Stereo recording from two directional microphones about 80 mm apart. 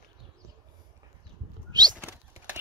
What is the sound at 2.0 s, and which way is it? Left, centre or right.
Bird, right.